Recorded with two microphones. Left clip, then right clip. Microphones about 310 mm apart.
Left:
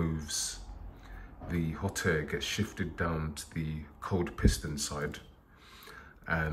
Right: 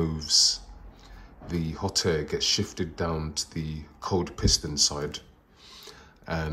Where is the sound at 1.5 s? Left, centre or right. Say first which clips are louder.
Right 7 dB; centre.